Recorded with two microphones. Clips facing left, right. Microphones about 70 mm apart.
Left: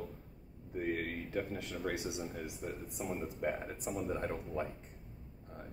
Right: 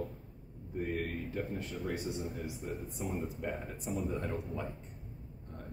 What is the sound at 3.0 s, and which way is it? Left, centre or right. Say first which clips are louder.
Speech: left 2 dB; left.